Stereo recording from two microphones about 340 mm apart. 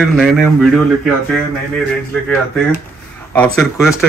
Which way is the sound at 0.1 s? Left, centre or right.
Centre.